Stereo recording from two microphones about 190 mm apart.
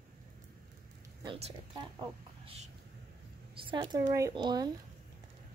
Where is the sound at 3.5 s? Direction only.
25° right (ahead or behind).